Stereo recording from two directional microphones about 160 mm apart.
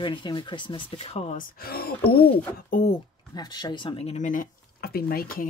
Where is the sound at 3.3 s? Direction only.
25° left (ahead or behind); by 5.4 s 65° left (ahead or behind).